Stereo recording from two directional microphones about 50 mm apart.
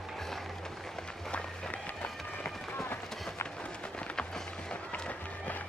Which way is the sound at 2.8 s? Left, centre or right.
Left.